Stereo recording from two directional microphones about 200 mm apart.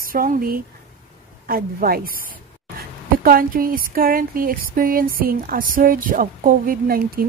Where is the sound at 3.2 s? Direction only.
45° right (ahead or behind).